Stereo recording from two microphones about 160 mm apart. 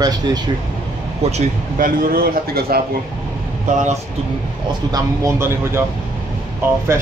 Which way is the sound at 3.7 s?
50° right (ahead or behind).